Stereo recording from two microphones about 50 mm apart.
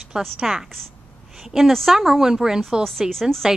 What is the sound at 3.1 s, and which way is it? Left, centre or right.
Speech, centre.